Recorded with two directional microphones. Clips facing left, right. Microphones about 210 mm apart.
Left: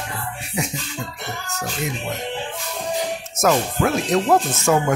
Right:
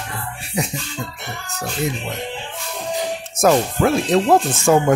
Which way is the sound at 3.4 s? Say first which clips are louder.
Right 3 dB; 30° right (ahead or behind).